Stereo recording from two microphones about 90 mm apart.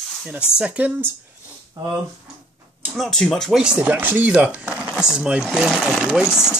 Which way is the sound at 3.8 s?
20° right (ahead or behind).